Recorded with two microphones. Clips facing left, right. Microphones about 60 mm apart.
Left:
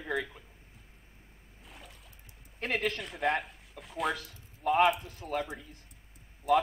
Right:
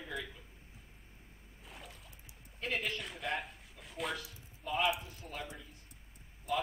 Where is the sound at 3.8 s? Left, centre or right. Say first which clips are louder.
Left 6 dB; centre.